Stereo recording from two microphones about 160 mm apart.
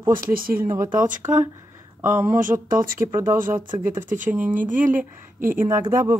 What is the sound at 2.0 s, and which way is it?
Speech, 15° right (ahead or behind).